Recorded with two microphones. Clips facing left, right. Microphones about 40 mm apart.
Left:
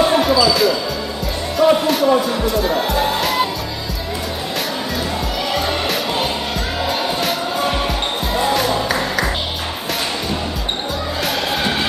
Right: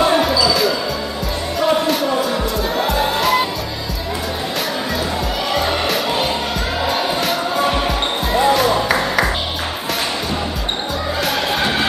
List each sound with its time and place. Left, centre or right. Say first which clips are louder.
0.0 s basketball bounce: left 1 dB; centre
1.6 s music: left 3 dB; centre
5.5 s music: right 2 dB; centre